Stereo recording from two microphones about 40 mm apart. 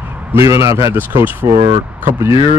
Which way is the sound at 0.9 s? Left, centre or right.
Right.